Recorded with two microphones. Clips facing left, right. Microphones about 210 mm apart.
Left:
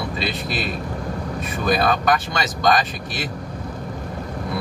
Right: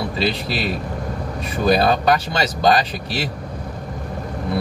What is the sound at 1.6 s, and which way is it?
Speech, 30° right (ahead or behind).